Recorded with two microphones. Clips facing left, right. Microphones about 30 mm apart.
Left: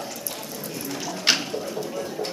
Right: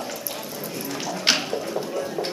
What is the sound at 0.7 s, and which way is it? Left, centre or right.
Bathtub, centre.